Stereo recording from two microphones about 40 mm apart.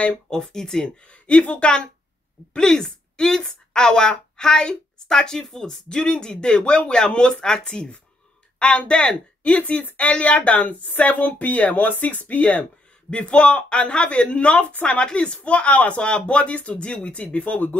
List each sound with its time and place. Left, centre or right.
0.3 s speech: centre
1.2 s a woman's voice: left
2.5 s a woman's voice: centre; by 16.0 s left
16.0 s a woman's voice: left